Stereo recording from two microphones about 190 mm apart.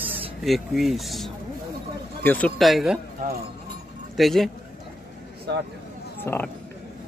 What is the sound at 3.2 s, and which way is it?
Speech, 45° right (ahead or behind).